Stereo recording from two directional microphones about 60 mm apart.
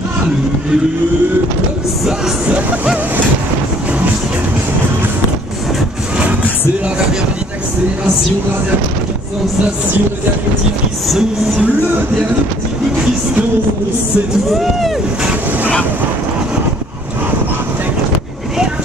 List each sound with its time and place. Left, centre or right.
2.4 s music: right
11.1 s speech: centre
14.5 s speech: centre